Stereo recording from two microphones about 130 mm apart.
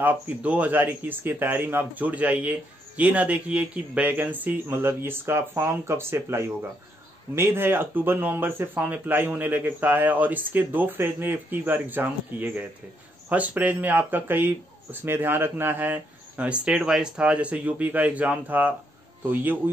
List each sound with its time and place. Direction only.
0.0 s speech: 15° right (ahead or behind)